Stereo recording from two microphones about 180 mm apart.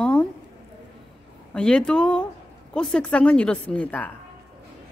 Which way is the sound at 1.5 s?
5° left (ahead or behind).